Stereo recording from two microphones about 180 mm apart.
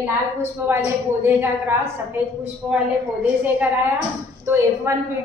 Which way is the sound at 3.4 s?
10° right (ahead or behind).